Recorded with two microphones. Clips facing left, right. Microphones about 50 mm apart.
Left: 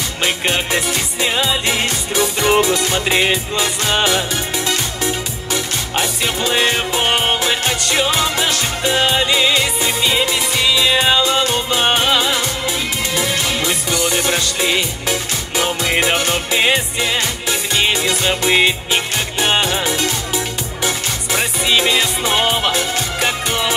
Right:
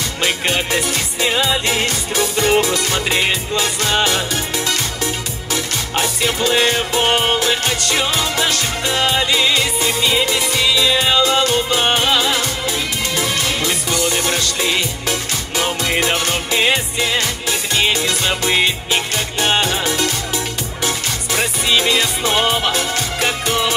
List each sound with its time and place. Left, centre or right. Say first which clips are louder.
0.2 s music: even; centre